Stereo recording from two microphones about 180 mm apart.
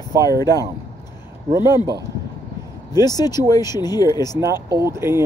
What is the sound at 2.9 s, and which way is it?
Speech, 20° left (ahead or behind).